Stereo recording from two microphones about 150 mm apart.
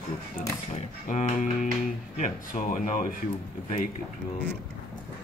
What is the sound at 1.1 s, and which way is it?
Speech, 55° left (ahead or behind).